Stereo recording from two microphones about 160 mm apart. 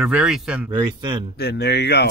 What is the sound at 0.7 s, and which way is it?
Speech, 25° right (ahead or behind).